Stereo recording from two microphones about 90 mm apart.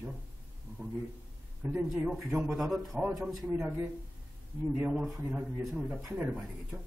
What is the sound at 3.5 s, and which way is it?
Speech, 15° right (ahead or behind).